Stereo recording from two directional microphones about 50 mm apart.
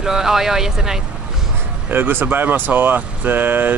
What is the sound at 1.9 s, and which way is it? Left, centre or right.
Speech, right.